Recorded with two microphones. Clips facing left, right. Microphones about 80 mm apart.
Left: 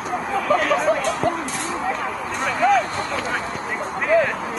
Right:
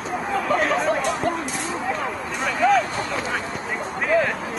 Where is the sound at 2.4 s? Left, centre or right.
Centre.